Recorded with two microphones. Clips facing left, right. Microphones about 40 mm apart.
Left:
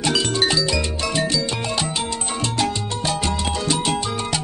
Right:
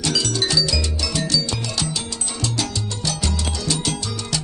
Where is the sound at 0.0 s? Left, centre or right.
Left.